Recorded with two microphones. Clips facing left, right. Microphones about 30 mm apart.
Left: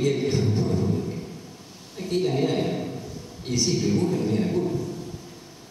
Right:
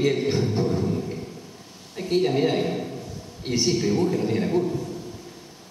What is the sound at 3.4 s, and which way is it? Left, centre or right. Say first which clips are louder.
A man's voice: right 2 dB; right.